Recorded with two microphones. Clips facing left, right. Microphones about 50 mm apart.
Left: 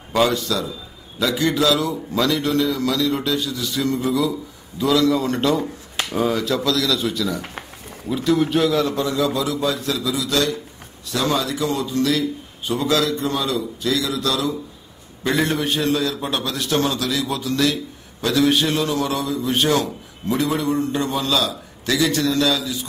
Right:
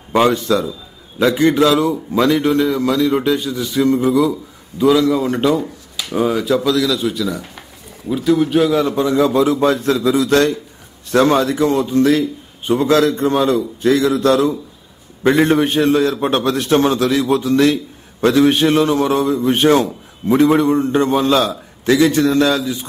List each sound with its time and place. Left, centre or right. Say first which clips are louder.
0.1 s a man's voice: right 5 dB; right
9.1 s a man's voice: right 7 dB; right